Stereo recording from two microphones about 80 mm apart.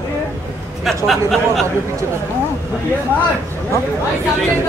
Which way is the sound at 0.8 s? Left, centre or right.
Centre.